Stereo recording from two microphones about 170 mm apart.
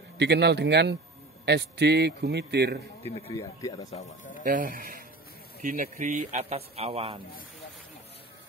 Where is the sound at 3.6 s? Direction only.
20° left (ahead or behind).